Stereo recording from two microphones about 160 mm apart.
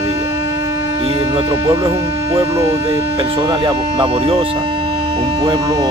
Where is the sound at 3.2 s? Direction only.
35° right (ahead or behind).